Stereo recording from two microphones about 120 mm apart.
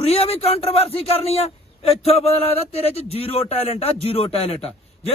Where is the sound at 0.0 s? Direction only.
55° left (ahead or behind).